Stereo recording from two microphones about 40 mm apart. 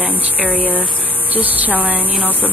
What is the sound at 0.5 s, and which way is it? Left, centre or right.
Speech, left.